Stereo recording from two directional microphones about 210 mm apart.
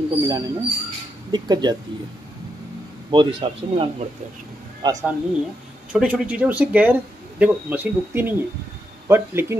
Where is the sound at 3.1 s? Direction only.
25° right (ahead or behind).